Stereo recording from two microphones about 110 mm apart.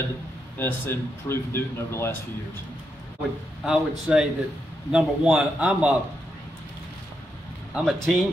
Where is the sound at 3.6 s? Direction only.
5° right (ahead or behind).